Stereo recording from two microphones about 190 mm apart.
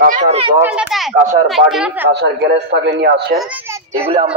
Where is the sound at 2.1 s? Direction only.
65° right (ahead or behind).